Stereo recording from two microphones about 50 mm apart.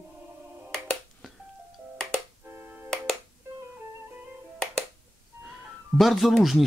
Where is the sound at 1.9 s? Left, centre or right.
Centre.